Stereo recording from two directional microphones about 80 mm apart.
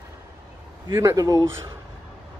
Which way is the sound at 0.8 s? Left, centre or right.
Right.